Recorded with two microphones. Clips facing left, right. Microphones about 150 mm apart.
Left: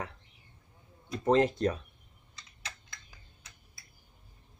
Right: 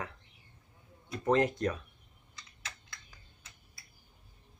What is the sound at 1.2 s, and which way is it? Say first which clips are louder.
Speech: left 3 dB; 30° left (ahead or behind).